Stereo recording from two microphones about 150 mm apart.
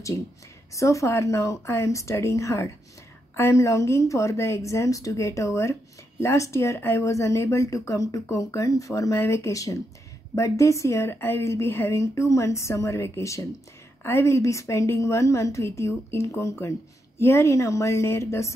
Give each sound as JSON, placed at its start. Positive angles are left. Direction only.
{"t": 0.7, "sound": "a woman's voice", "side_deg": 20}